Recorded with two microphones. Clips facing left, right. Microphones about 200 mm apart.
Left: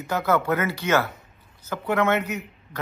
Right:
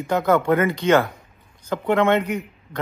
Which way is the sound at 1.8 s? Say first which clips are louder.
Right 4 dB; 30° right (ahead or behind).